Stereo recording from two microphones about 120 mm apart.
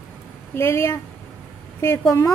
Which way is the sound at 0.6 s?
20° left (ahead or behind).